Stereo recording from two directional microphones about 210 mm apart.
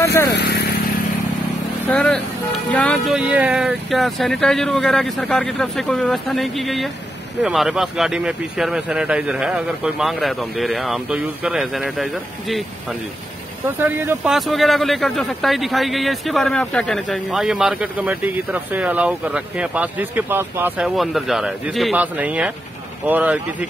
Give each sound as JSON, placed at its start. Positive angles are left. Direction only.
{"t": 0.0, "sound": "speech", "side_deg": 15}
{"t": 0.3, "sound": "vehicle", "side_deg": 50}
{"t": 1.9, "sound": "speech", "side_deg": 5}
{"t": 13.7, "sound": "speech", "side_deg": -10}